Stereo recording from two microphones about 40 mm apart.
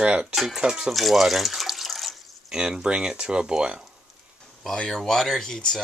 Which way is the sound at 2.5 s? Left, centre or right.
Centre.